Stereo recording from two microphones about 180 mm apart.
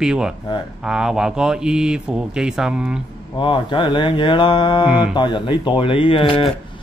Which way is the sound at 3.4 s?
25° left (ahead or behind).